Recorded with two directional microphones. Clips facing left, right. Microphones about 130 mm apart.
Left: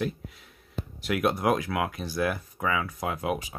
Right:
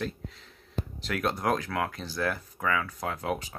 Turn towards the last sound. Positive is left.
turn(degrees=10)  # may be behind; listen again after turning